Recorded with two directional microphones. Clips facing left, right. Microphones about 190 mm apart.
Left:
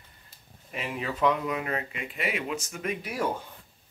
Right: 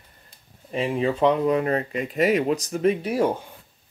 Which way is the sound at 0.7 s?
30° right (ahead or behind).